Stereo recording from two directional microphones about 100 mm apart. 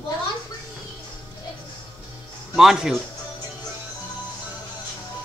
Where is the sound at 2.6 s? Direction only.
5° right (ahead or behind).